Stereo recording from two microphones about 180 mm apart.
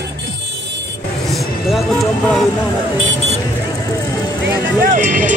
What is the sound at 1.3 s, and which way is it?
Vehicle, centre (ahead or behind).